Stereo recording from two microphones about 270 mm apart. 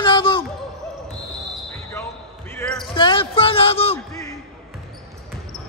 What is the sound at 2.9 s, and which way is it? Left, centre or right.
Speech, centre.